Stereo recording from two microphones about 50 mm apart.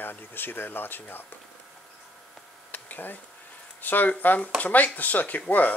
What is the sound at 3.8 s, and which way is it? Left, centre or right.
Speech, left.